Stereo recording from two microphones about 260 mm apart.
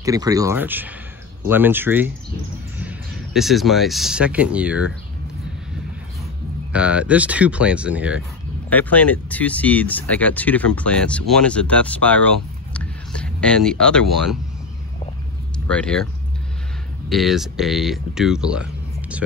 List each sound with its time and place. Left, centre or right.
0.0 s speech: centre
6.7 s speech: centre
8.6 s speech: centre
15.7 s speech: centre
17.1 s speech: centre